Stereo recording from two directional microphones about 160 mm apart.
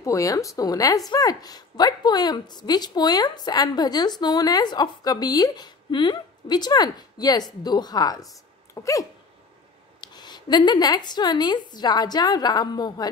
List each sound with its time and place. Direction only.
0.0 s speech: 20° left (ahead or behind)
8.7 s dog: 20° left (ahead or behind)
9.9 s speech: 25° left (ahead or behind)